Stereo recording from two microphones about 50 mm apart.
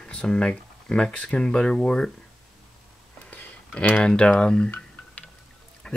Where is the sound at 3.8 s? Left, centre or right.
Left.